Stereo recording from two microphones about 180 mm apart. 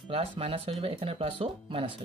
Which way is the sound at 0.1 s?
30° right (ahead or behind).